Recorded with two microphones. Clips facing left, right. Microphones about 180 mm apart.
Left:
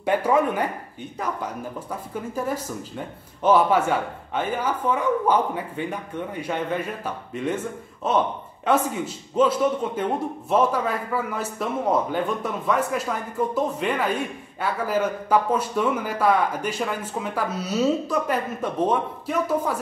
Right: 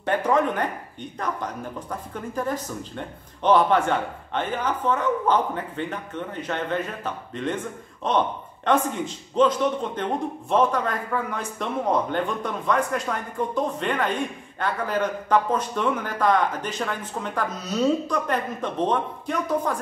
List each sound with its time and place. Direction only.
0.0 s speech: 10° left (ahead or behind)